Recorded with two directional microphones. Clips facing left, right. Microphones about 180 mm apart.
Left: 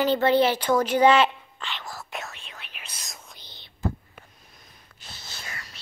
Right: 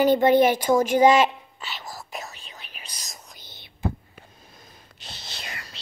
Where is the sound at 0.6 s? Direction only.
10° right (ahead or behind).